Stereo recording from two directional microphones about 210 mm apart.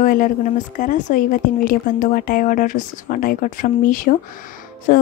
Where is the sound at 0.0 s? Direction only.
40° left (ahead or behind).